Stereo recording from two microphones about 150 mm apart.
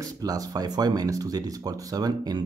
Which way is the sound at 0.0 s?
25° right (ahead or behind).